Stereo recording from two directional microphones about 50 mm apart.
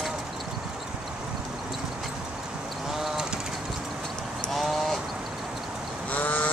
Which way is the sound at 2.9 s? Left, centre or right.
Centre.